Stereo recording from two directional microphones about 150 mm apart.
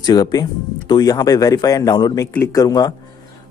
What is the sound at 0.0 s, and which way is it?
A man's voice, 25° left (ahead or behind).